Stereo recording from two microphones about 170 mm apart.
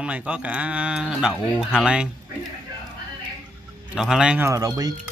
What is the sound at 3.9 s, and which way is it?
Speech, 5° right (ahead or behind).